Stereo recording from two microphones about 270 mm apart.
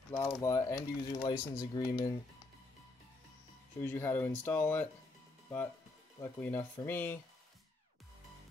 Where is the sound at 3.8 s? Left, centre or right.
Centre.